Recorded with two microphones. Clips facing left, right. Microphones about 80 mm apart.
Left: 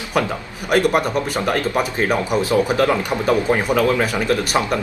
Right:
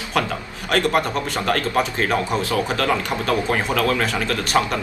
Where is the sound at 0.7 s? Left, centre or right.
Centre.